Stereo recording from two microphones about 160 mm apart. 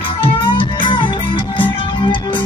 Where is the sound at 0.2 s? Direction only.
30° left (ahead or behind).